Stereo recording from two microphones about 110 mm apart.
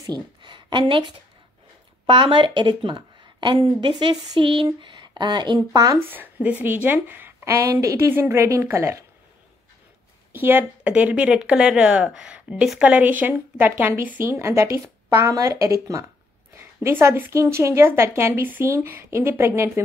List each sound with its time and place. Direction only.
0.0 s a woman's voice: 40° right (ahead or behind)
5.9 s a woman's voice: 20° right (ahead or behind)
10.3 s a woman's voice: 20° right (ahead or behind)